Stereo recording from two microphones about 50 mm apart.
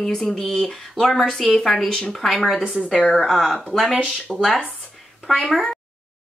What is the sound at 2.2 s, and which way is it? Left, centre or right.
Speech, centre.